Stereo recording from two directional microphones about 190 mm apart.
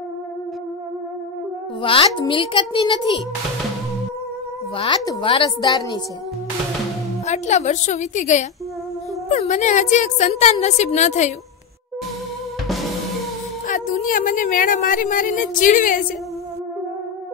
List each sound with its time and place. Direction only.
1.8 s a woman's voice: 30° left (ahead or behind)
4.7 s a woman's voice: 25° left (ahead or behind)
7.2 s a woman's voice: 35° left (ahead or behind)
13.7 s speech: 45° left (ahead or behind)